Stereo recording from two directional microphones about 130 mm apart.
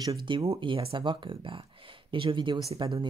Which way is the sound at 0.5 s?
40° right (ahead or behind).